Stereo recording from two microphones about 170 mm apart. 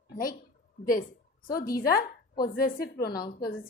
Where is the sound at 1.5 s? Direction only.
60° left (ahead or behind).